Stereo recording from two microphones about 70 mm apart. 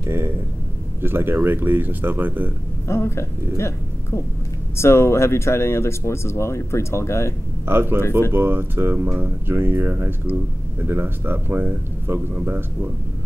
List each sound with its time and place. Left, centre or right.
1.0 s speech: right
2.9 s speech: left
7.6 s speech: right